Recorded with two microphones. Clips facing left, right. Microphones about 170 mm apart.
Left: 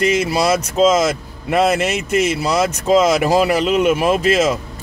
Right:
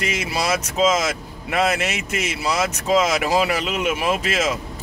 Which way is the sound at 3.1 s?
35° left (ahead or behind).